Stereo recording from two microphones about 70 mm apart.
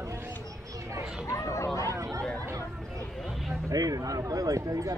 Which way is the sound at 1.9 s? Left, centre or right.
Right.